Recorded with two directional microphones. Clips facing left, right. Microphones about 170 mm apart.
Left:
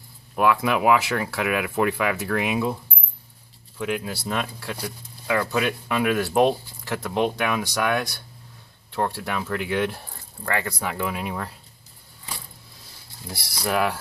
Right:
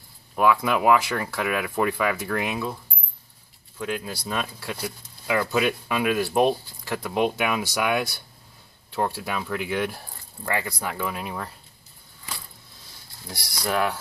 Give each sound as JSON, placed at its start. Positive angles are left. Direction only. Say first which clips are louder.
{"t": 0.4, "sound": "speech", "louder": "even", "side_deg": 0}
{"t": 3.7, "sound": "speech", "louder": "left 2 dB", "side_deg": 0}
{"t": 13.3, "sound": "speech", "louder": "left 1 dB", "side_deg": 5}